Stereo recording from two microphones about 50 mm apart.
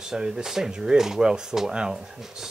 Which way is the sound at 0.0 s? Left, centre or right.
Centre.